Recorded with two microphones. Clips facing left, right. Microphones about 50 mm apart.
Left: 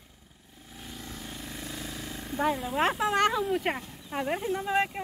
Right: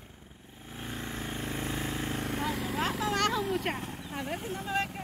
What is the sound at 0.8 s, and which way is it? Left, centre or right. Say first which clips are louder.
Vehicle: right 4 dB; right.